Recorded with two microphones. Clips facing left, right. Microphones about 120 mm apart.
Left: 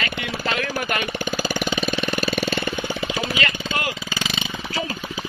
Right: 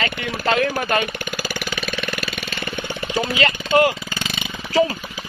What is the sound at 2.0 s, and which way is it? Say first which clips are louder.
Mechanisms: left 5 dB; 35° left (ahead or behind).